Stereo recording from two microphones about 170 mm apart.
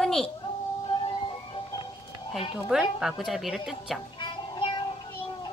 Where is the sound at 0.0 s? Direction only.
5° left (ahead or behind).